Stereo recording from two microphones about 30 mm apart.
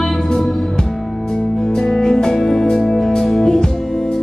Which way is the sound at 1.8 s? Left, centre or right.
Centre.